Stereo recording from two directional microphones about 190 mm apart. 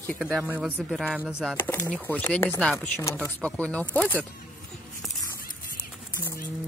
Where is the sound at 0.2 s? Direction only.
5° right (ahead or behind).